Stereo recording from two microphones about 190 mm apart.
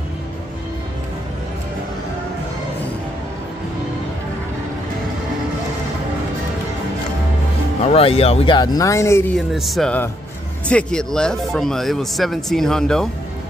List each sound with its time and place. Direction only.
7.8 s speech: 30° left (ahead or behind); by 9.4 s 15° left (ahead or behind)
9.5 s speech: centre (ahead or behind)